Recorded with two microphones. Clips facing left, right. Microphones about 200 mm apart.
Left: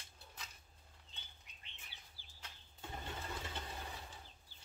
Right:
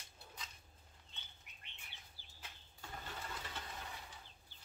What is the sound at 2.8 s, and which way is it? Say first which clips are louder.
Vehicle: left 2 dB; 25° left (ahead or behind).